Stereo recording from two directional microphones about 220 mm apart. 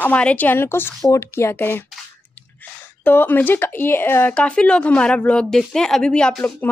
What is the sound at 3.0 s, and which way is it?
Speech, 10° left (ahead or behind).